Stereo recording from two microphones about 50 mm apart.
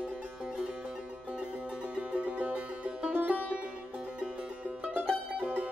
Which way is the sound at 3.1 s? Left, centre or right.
Right.